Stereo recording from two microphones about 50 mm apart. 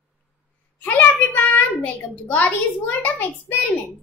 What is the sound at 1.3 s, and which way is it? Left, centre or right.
Child singing, left.